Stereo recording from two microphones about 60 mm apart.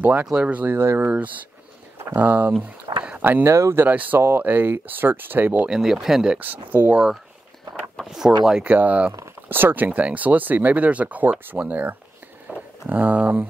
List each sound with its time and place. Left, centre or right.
0.0 s speech: right
0.3 s speech: centre
0.6 s speech: right
1.0 s speech: right
3.2 s speech: right
5.7 s speech: centre
6.3 s speech: right
8.0 s speech: centre
8.6 s speech: right
9.5 s speech: right